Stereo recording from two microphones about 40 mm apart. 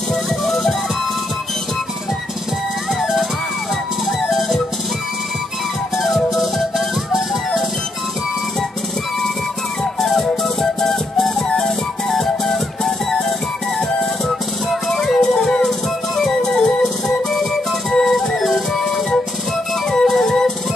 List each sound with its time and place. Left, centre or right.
0.1 s music: centre
2.9 s music: centre
4.3 s music: centre
5.9 s music: centre
9.9 s music: centre
14.7 s music: centre
18.4 s music: centre